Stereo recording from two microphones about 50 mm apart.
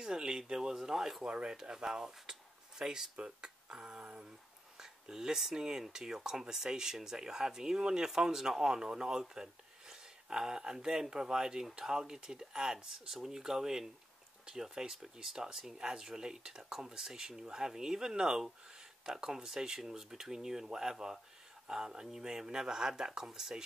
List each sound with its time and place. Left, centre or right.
0.0 s speech: centre
1.2 s speech: centre